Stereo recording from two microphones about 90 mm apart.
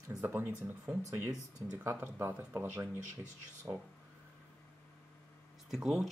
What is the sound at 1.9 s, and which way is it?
Speech, 25° right (ahead or behind).